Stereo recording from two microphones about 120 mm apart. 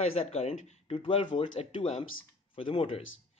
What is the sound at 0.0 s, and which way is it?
Speech, 55° left (ahead or behind).